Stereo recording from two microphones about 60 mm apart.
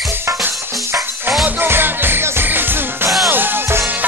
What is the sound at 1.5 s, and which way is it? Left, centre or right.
Music, right.